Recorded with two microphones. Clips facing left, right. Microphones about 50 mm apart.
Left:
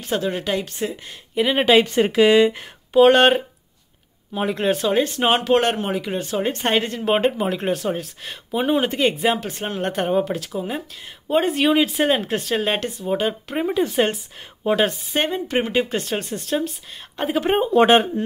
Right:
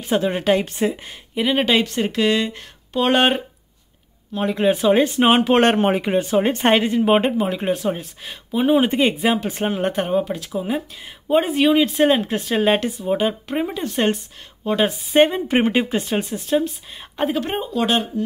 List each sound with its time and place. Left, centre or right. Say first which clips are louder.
0.1 s speech: right 4 dB; right
1.3 s speech: left 2 dB; centre
3.1 s speech: right 2 dB; centre
4.3 s speech: right 1 dB; centre
4.6 s speech: right 5 dB; centre
4.9 s speech: right 3 dB; right
5.5 s a woman's voice: right 3 dB; right
6.8 s speech: right 3 dB; centre
8.8 s speech: right 1 dB; centre
15.1 s speech: right 7 dB; centre
17.6 s speech: left 9 dB; left